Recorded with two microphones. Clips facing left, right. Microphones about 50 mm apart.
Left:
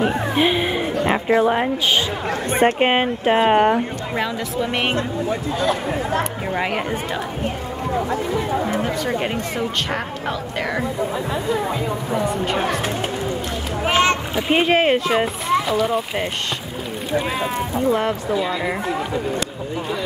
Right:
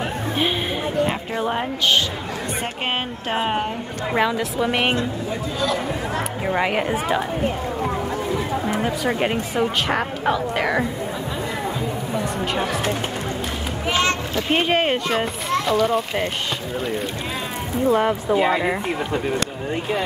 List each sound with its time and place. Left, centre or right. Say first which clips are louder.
0.4 s speech: left 4 dB; centre
1.0 s speech: left 6 dB; left
2.6 s speech: left 13 dB; left
4.1 s speech: right 7 dB; centre
6.4 s speech: right 2 dB; centre
8.8 s speech: right 1 dB; centre
13.8 s a sound: left 4 dB; left
14.5 s speech: left 3 dB; centre
17.8 s speech: right 2 dB; centre
18.3 s speech: right 6 dB; right